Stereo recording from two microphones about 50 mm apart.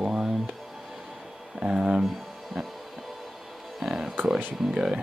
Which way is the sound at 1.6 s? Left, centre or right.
Centre.